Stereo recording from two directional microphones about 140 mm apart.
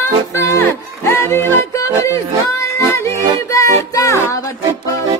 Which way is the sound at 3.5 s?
20° left (ahead or behind).